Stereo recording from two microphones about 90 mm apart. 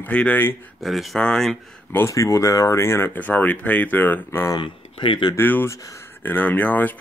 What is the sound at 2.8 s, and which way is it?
Speech, 25° left (ahead or behind).